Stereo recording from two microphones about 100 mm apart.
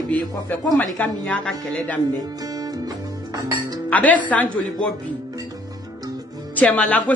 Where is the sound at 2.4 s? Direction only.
40° right (ahead or behind).